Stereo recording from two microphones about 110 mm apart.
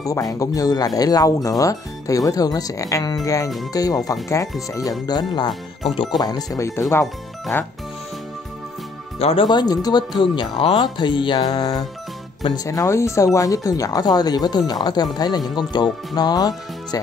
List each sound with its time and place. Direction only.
0.0 s speech: 30° left (ahead or behind)
5.5 s speech: centre (ahead or behind)
5.9 s speech: 35° left (ahead or behind); by 7.7 s 20° left (ahead or behind)
9.2 s speech: 60° left (ahead or behind)
9.5 s speech: 40° left (ahead or behind)